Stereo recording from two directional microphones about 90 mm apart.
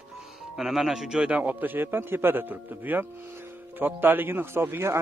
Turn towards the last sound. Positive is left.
turn(degrees=-30)  # may be behind; listen again after turning